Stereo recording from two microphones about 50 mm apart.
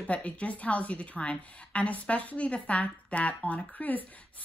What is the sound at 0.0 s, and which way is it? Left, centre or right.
A woman's voice, left.